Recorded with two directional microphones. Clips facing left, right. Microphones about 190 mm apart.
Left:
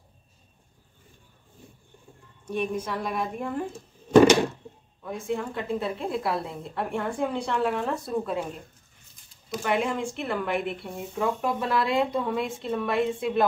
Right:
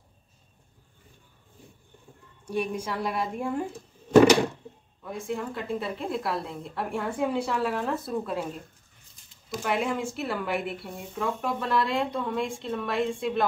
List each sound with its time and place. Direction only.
2.4 s a woman's voice: 10° right (ahead or behind)
5.0 s speech: centre (ahead or behind)
9.5 s speech: centre (ahead or behind)